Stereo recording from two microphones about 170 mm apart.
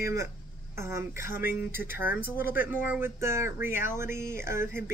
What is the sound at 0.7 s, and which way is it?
Speech, 15° right (ahead or behind).